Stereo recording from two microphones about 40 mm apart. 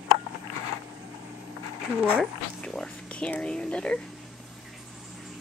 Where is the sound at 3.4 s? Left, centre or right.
Left.